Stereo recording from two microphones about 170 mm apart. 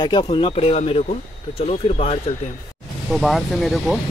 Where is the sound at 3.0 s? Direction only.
Centre (ahead or behind).